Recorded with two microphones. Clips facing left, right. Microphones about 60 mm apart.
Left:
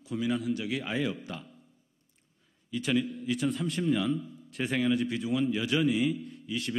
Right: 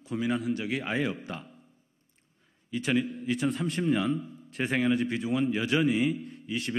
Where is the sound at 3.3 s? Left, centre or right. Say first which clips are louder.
Right 1 dB; right.